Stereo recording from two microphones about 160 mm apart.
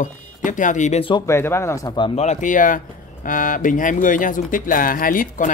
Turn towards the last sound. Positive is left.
turn(degrees=60)  # may be behind; listen again after turning